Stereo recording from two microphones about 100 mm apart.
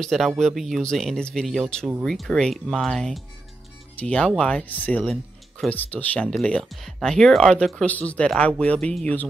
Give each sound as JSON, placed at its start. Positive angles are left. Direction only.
{"t": 0.0, "sound": "speech", "side_deg": 5}
{"t": 5.0, "sound": "music", "side_deg": 0}
{"t": 5.7, "sound": "speech", "side_deg": 15}
{"t": 6.3, "sound": "speech", "side_deg": 5}